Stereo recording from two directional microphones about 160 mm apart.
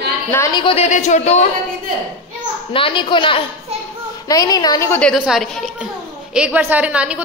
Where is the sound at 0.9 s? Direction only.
45° left (ahead or behind).